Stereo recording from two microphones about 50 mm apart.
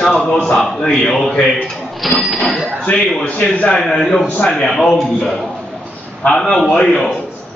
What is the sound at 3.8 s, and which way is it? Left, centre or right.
A man's voice, centre.